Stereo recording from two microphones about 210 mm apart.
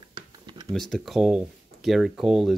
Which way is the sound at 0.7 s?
Centre (ahead or behind).